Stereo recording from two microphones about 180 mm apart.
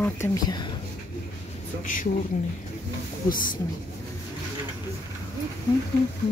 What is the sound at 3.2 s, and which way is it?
Speech, 50° left (ahead or behind).